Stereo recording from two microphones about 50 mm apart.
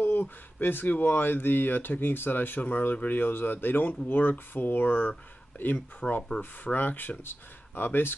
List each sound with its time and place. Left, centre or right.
0.0 s speech: left